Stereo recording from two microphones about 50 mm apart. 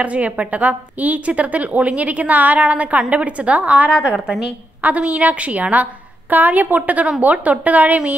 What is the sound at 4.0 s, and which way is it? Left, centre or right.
Speech, centre.